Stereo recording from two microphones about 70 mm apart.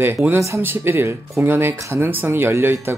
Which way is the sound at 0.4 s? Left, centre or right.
Right.